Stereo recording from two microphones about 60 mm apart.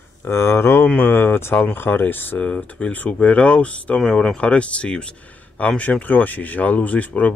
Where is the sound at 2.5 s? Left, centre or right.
Left.